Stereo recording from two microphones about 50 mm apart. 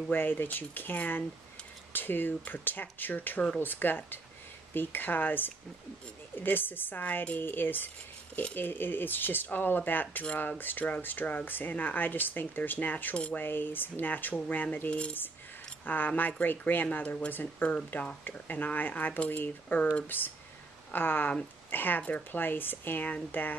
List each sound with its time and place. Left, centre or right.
0.1 s speech: left
13.1 s speech: left
13.4 s speech: left
14.9 s speech: left
15.8 s speech: left